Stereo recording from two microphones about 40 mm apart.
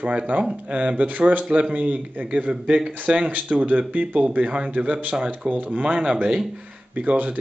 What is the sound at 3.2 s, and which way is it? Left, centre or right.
Speech, right.